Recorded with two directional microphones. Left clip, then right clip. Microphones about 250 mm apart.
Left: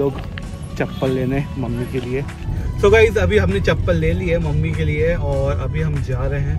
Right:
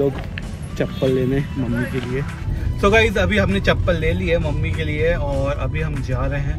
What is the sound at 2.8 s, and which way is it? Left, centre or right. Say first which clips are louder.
Speech: left 3 dB; centre.